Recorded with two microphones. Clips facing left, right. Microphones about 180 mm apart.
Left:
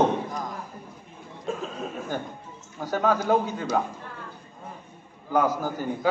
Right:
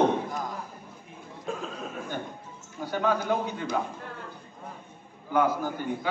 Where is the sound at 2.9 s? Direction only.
40° left (ahead or behind).